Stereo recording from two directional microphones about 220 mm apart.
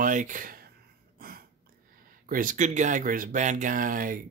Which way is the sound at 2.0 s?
40° right (ahead or behind).